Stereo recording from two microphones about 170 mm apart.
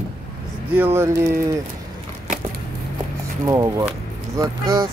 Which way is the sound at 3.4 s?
20° right (ahead or behind).